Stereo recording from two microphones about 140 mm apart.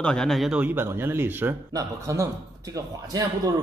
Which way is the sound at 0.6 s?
15° right (ahead or behind).